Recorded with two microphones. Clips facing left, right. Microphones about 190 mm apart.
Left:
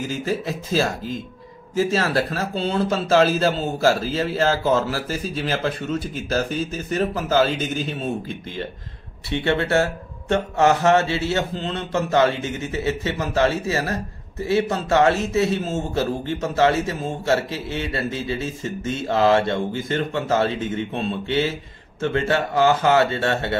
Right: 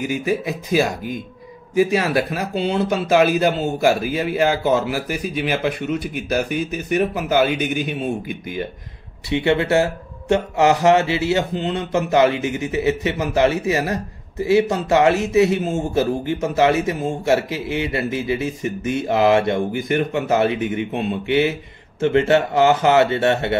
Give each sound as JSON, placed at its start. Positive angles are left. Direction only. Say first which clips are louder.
{"t": 0.0, "sound": "a man's voice", "louder": "right 3 dB", "side_deg": -15}